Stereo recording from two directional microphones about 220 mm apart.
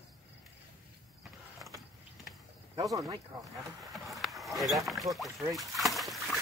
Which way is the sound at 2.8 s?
15° right (ahead or behind).